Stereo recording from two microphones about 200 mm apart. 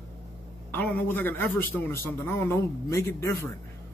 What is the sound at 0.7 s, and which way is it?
A man's voice, 10° left (ahead or behind).